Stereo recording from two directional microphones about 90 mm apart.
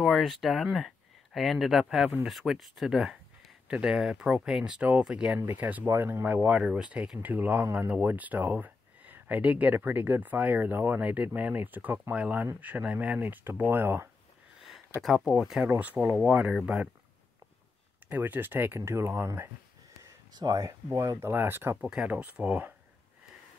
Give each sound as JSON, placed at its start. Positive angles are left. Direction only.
{"t": 0.0, "sound": "speech", "side_deg": 0}
{"t": 6.2, "sound": "speech", "side_deg": -15}
{"t": 15.0, "sound": "speech", "side_deg": 0}
{"t": 15.8, "sound": "speech", "side_deg": -15}
{"t": 18.0, "sound": "speech", "side_deg": -20}
{"t": 20.3, "sound": "speech", "side_deg": -45}
{"t": 21.8, "sound": "speech", "side_deg": -10}